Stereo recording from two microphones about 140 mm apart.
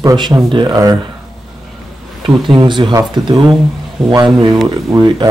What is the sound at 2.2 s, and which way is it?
Speech, 35° right (ahead or behind).